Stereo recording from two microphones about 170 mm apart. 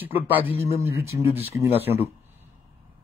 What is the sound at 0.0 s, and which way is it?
A man's voice, 10° right (ahead or behind).